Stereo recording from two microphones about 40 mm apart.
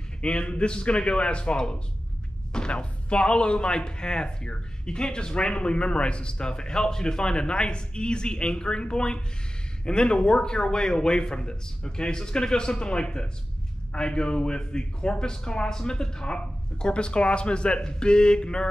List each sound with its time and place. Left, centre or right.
0.2 s speech: left